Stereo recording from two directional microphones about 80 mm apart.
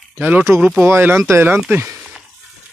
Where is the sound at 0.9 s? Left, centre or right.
Right.